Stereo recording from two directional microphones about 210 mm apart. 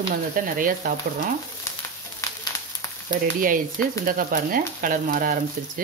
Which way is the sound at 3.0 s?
40° right (ahead or behind).